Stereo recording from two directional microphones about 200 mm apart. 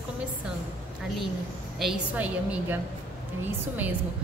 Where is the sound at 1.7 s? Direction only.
5° right (ahead or behind).